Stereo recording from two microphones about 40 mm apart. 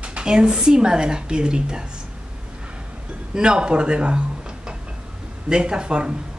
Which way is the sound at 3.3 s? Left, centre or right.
Right.